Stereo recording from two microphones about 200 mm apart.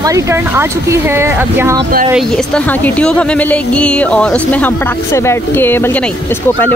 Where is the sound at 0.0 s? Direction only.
15° right (ahead or behind).